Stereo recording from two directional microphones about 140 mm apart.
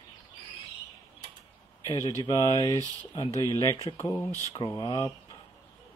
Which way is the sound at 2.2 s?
30° left (ahead or behind).